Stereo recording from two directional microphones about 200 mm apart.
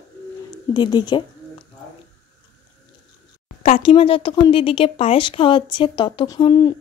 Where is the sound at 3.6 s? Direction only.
30° left (ahead or behind).